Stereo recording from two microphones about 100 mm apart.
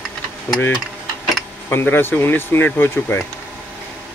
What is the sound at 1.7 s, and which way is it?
Speech, 20° left (ahead or behind).